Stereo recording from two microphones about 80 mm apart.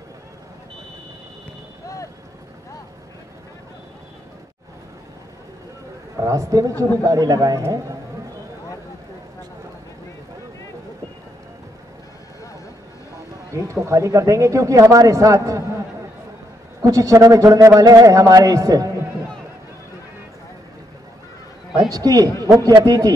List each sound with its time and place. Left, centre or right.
6.1 s a man's voice: right
13.5 s speech: right
16.8 s a man's voice: right
21.8 s a man's voice: right